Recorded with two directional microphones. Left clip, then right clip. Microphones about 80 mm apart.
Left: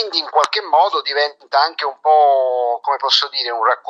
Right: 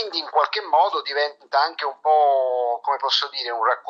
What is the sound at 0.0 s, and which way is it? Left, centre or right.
Speech, left.